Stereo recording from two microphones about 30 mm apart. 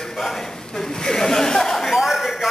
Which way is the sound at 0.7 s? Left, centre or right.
Left.